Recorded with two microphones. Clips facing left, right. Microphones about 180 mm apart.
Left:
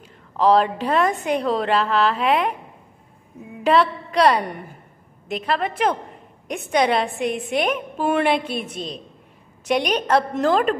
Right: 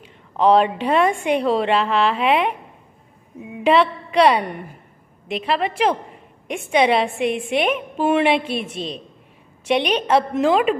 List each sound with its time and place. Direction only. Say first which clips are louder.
0.5 s a woman's voice: right 2 dB; 10° right (ahead or behind)
3.6 s a woman's voice: right 1 dB; 5° right (ahead or behind)
8.5 s a woman's voice: right 2 dB; 25° right (ahead or behind)
9.8 s a woman's voice: right 1 dB; centre (ahead or behind)